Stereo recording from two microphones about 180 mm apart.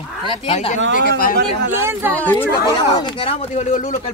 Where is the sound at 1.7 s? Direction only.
15° right (ahead or behind).